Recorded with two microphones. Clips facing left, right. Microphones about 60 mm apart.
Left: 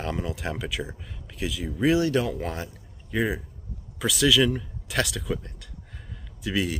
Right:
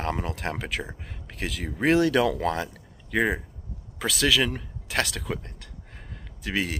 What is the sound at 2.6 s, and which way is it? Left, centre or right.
Speech, right.